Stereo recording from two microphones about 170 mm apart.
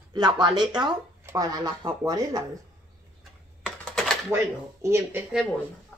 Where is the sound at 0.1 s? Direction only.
25° right (ahead or behind).